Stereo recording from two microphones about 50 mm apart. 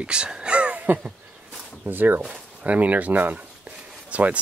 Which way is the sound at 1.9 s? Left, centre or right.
Right.